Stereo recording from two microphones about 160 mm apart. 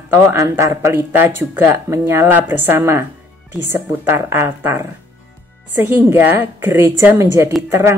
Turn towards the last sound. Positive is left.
turn(degrees=-15)  # may be behind; listen again after turning